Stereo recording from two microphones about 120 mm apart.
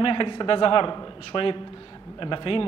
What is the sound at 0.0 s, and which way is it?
A man's voice, 45° left (ahead or behind).